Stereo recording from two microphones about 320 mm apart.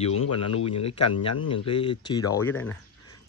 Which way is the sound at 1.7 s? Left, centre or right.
Centre.